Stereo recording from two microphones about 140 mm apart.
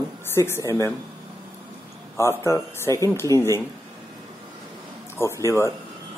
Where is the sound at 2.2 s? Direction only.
20° left (ahead or behind).